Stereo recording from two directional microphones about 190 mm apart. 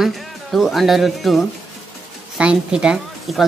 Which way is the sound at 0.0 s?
Centre (ahead or behind).